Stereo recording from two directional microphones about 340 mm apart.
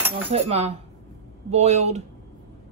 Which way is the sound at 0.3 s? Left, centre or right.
Centre.